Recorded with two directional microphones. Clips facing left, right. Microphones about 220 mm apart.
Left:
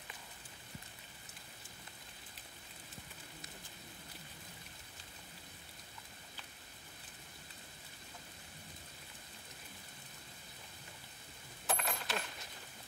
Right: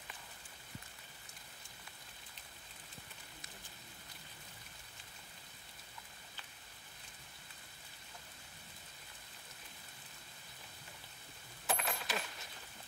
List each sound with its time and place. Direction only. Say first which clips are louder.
11.6 s coin: even; centre (ahead or behind)